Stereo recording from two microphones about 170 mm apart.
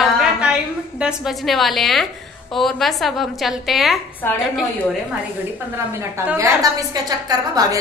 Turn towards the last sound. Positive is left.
turn(degrees=-20)  # may be behind; listen again after turning